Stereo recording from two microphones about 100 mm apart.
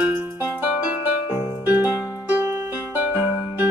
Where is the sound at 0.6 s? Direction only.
20° right (ahead or behind).